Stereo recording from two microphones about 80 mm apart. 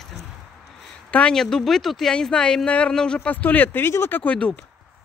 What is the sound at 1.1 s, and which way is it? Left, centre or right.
Speech, centre.